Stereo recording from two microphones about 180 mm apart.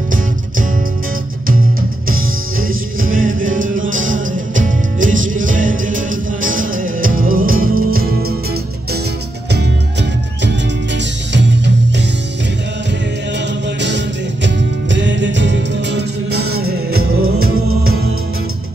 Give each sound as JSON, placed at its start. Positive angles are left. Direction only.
{"t": 1.5, "sound": "music", "side_deg": -50}
{"t": 11.3, "sound": "music", "side_deg": -80}
{"t": 13.7, "sound": "music", "side_deg": -80}
{"t": 16.9, "sound": "music", "side_deg": -60}